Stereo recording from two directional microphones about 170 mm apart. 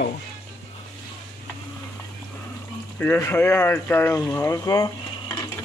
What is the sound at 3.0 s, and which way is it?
Speech, 15° left (ahead or behind).